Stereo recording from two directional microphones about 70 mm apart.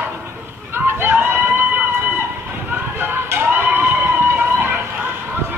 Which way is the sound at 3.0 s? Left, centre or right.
Right.